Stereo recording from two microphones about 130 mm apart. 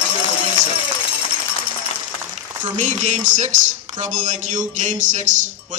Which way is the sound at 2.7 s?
65° right (ahead or behind).